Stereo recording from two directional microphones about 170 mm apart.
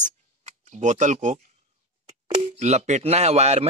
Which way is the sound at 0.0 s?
45° right (ahead or behind).